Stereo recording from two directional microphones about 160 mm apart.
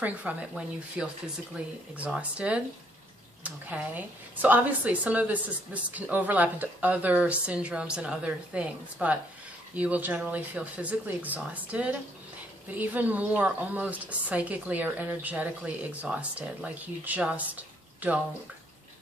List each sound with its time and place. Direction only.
0.0 s a woman's voice: 10° right (ahead or behind)